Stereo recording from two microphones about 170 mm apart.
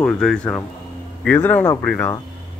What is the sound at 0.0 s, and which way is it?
Speech, 5° left (ahead or behind).